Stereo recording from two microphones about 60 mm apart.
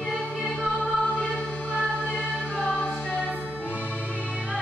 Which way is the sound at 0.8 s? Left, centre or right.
Left.